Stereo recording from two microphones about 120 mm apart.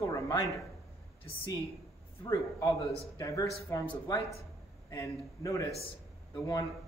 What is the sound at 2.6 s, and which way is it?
A man's voice, 30° left (ahead or behind).